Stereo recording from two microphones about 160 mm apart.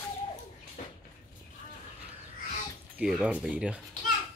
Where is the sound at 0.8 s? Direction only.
55° left (ahead or behind).